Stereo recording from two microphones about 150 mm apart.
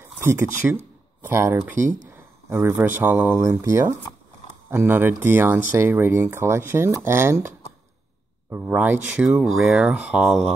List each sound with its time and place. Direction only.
0.0 s speech: 15° right (ahead or behind)
1.8 s speech: 55° right (ahead or behind)
2.1 s a sound: 15° right (ahead or behind)
3.0 s speech: 10° right (ahead or behind)
8.5 s speech: 10° right (ahead or behind)